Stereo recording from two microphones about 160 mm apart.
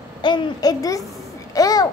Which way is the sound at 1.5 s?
25° left (ahead or behind).